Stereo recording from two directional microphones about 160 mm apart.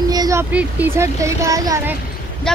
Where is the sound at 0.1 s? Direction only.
20° right (ahead or behind).